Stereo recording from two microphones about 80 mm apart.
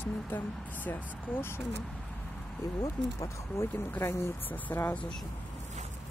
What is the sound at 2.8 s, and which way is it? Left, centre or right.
Speech, left.